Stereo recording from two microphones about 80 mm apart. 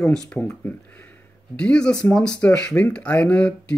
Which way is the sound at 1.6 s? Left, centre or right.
Centre.